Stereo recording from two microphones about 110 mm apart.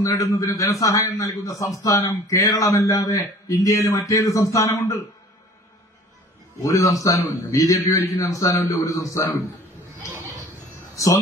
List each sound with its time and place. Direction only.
0.0 s a man's voice: 30° left (ahead or behind)
6.6 s a man's voice: 30° left (ahead or behind)